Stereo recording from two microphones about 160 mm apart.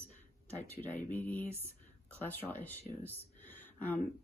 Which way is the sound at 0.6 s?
10° left (ahead or behind).